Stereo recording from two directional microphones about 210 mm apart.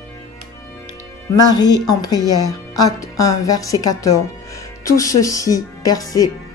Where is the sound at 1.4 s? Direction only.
20° left (ahead or behind).